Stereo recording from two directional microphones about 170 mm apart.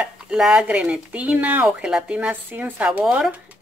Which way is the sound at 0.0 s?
5° right (ahead or behind).